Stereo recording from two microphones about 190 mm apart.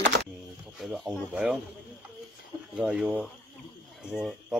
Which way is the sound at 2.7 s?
5° right (ahead or behind).